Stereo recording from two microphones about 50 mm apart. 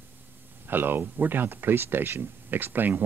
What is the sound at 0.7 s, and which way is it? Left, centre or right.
Speech, right.